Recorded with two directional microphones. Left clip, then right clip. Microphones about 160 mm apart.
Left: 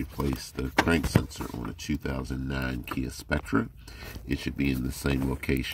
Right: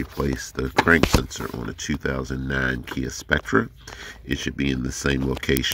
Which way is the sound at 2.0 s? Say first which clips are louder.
Right 7 dB; 35° right (ahead or behind).